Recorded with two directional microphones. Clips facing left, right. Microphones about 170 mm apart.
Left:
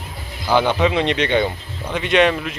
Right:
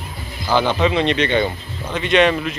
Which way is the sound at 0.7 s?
10° left (ahead or behind).